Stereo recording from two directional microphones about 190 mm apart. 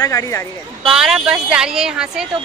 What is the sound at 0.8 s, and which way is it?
Speech, 5° right (ahead or behind).